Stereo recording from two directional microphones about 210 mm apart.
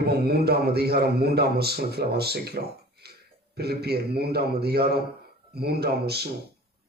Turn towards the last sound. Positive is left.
turn(degrees=-50)  # may be behind; listen again after turning